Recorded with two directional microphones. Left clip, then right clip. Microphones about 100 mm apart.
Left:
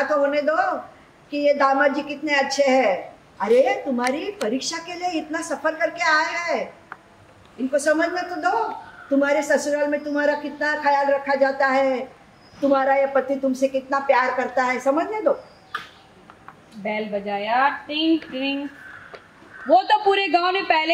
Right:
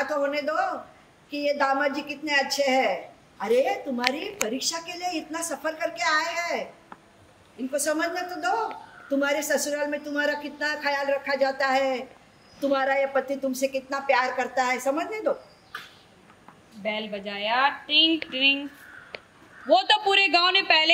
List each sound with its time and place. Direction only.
0.0 s a woman's voice: 10° right (ahead or behind)
7.7 s a woman's voice: 10° right (ahead or behind)
16.8 s a woman's voice: 40° right (ahead or behind)
19.8 s a woman's voice: 50° right (ahead or behind)
20.5 s a woman's voice: 30° right (ahead or behind)